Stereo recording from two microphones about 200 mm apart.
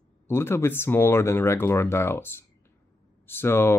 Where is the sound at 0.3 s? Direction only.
15° left (ahead or behind).